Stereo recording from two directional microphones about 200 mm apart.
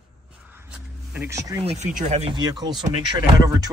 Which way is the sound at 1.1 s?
10° right (ahead or behind).